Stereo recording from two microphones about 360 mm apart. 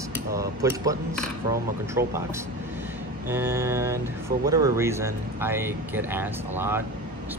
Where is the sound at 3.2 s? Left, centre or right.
Centre.